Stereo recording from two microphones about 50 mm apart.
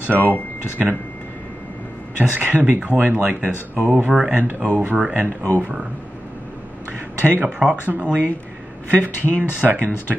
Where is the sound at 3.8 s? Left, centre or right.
Right.